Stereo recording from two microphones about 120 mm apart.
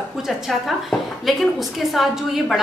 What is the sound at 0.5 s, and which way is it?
A woman's voice, centre (ahead or behind).